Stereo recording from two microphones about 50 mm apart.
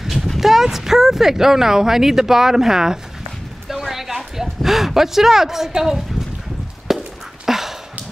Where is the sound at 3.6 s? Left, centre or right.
Centre.